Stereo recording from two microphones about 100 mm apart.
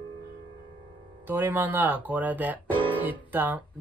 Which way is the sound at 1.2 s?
20° right (ahead or behind).